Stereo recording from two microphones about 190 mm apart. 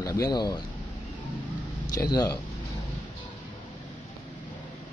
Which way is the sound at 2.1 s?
20° left (ahead or behind).